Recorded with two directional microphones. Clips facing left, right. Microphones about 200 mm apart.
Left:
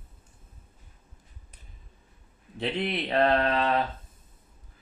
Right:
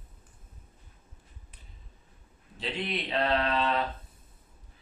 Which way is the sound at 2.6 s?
60° left (ahead or behind).